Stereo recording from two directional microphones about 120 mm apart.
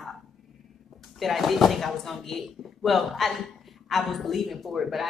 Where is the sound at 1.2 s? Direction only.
Centre (ahead or behind).